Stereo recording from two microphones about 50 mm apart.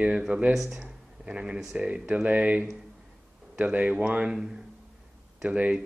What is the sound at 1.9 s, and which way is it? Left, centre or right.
Speech, right.